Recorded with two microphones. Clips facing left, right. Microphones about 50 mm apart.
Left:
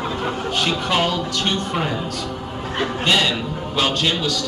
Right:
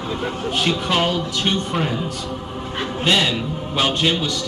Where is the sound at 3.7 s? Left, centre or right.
Centre.